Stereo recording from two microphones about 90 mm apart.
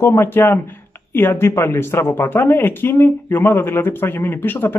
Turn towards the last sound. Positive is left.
turn(degrees=25)  # may be behind; listen again after turning